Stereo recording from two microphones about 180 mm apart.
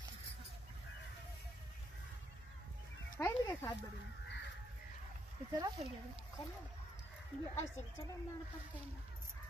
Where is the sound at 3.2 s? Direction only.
15° left (ahead or behind).